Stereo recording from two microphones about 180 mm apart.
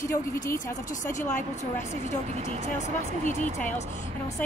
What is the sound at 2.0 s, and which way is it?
Speech, 40° right (ahead or behind).